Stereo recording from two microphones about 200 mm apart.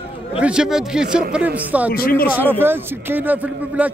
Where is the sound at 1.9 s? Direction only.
45° left (ahead or behind).